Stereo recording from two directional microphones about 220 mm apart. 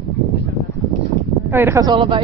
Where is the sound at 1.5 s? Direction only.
10° right (ahead or behind).